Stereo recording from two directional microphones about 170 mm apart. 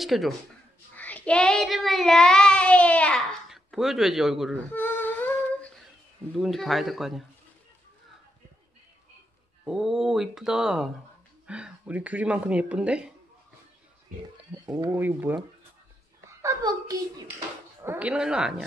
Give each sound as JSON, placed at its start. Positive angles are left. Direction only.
{"t": 0.0, "sound": "speech", "side_deg": 0}
{"t": 0.9, "sound": "child singing", "side_deg": 10}
{"t": 4.7, "sound": "humming", "side_deg": 10}
{"t": 6.3, "sound": "child singing", "side_deg": 0}
{"t": 9.7, "sound": "child singing", "side_deg": -5}
{"t": 11.4, "sound": "speech", "side_deg": -5}
{"t": 15.0, "sound": "speech", "side_deg": -10}
{"t": 16.4, "sound": "a child's voice", "side_deg": -20}
{"t": 17.8, "sound": "child singing", "side_deg": -10}